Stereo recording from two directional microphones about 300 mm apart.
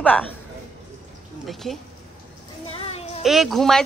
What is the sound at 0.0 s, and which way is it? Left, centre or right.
Speech, centre.